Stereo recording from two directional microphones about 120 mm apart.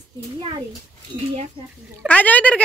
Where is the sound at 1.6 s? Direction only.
50° right (ahead or behind).